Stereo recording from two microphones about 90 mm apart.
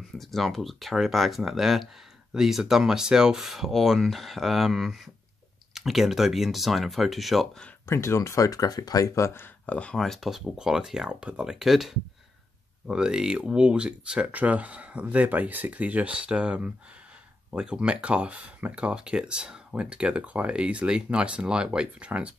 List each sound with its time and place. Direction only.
0.2 s speech: centre (ahead or behind)
7.8 s speech: 30° left (ahead or behind)
9.7 s speech: 15° left (ahead or behind); by 22.3 s 15° right (ahead or behind)